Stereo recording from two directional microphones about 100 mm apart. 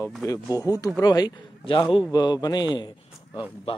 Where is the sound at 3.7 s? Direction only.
70° left (ahead or behind).